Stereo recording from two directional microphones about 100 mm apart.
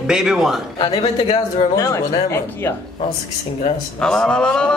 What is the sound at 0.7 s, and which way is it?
Speech, 60° left (ahead or behind).